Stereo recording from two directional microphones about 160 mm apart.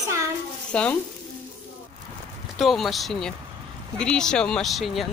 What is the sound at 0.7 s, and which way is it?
Stir, 5° left (ahead or behind).